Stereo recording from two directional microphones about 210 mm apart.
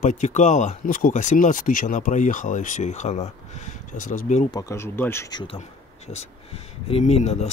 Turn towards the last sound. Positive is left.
turn(degrees=30)  # may be behind; listen again after turning